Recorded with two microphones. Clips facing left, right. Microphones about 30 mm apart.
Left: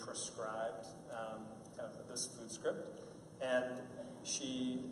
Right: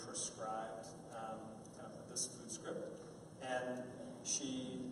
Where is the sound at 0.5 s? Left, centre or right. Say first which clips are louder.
Left 3 dB; centre.